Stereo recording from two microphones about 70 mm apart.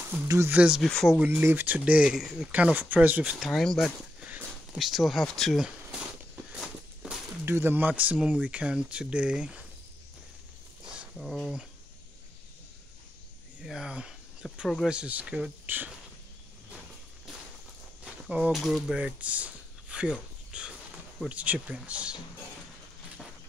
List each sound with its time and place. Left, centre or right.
0.5 s speech: centre
0.8 s speech: centre
1.4 s speech: right
2.0 s speech: centre
2.5 s speech: right
3.3 s speech: centre
5.6 s a sound: centre
6.5 s walk: centre
7.4 s speech: right; by 9.7 s centre
11.1 s speech: centre
13.6 s speech: centre
15.6 s speech: right
18.0 s a sound: centre
18.5 s speech: centre